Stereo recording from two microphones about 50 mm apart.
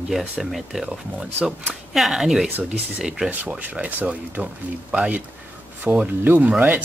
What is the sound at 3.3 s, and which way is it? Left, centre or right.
Speech, right.